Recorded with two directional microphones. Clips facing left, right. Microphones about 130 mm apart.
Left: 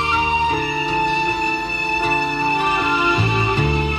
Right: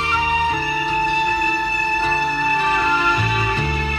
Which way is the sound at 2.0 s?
20° left (ahead or behind).